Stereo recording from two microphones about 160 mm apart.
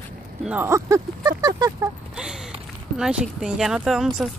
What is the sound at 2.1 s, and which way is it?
Speech, 5° right (ahead or behind).